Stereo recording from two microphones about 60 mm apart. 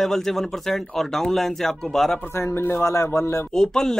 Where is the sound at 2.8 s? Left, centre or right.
Left.